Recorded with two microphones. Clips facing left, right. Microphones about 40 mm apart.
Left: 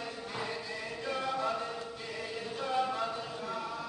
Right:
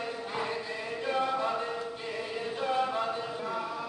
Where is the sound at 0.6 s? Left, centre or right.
Right.